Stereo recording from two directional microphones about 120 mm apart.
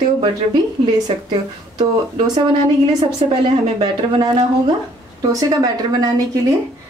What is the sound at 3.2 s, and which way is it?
Speech, 45° right (ahead or behind).